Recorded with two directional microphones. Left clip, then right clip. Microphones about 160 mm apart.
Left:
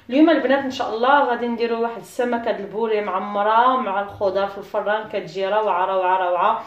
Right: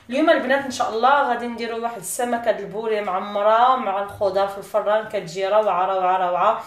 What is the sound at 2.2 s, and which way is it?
A woman's voice, 35° left (ahead or behind).